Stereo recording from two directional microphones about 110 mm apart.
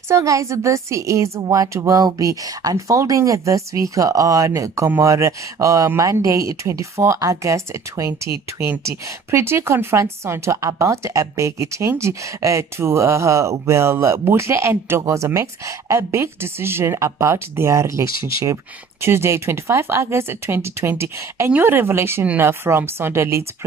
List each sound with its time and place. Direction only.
0.1 s a woman's voice: 30° right (ahead or behind)